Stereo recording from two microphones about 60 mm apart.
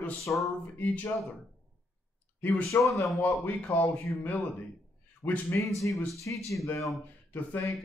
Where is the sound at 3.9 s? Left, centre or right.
Left.